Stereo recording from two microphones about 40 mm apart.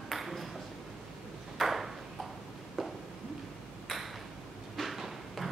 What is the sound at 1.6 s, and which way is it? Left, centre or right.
Ping, centre.